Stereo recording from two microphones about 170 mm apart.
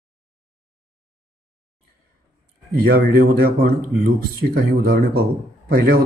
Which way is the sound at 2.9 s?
65° right (ahead or behind).